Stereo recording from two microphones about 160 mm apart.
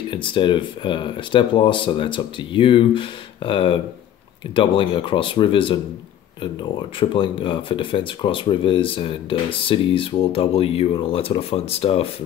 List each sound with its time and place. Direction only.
0.1 s speech: 30° left (ahead or behind)
7.0 s speech: 30° left (ahead or behind)